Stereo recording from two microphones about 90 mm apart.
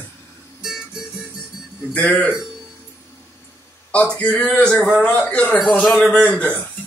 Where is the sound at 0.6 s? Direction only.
5° right (ahead or behind).